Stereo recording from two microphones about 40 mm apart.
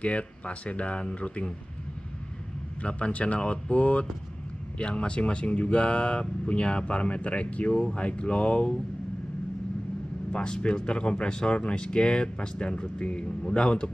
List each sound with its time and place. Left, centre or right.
0.0 s speech: left
2.8 s speech: left
10.3 s speech: left